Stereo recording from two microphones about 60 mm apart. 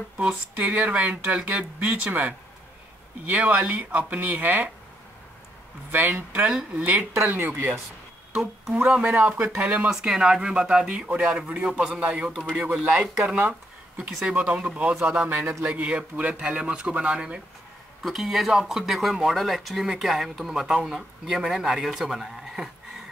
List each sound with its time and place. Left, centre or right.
0.6 s speech: right
5.9 s speech: right
6.4 s a man's voice: centre
6.8 s speech: right
7.2 s speech: right
8.3 s speech: centre
8.7 s speech: right
9.8 s a man's voice: centre
18.0 s speech: centre